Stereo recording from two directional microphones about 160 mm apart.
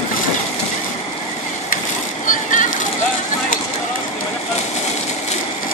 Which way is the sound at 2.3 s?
55° left (ahead or behind).